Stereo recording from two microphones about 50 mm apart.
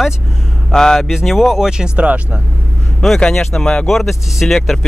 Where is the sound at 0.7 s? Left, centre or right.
Centre.